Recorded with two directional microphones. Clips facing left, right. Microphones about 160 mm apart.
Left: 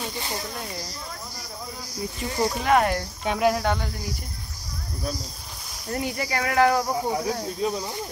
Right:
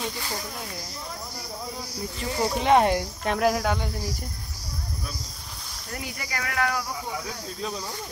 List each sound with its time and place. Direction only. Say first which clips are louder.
2.3 s speech: left 1 dB; 10° right (ahead or behind)
2.6 s speech: right 2 dB; 25° right (ahead or behind)
3.3 s cricket: left 1 dB; centre (ahead or behind)
5.9 s speech: left 8 dB; 30° left (ahead or behind)
7.6 s speech: left 6 dB; 15° left (ahead or behind)